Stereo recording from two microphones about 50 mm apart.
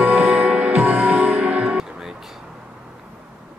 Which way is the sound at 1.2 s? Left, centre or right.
Centre.